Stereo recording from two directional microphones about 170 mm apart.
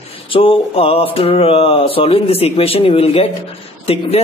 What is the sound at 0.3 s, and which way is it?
Speech, 30° left (ahead or behind).